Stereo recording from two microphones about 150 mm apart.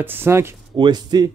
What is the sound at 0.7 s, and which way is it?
Speech, 30° right (ahead or behind).